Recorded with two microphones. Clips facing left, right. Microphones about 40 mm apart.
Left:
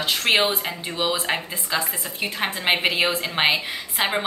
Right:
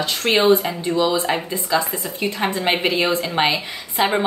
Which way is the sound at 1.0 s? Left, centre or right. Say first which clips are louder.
Right 5 dB; left.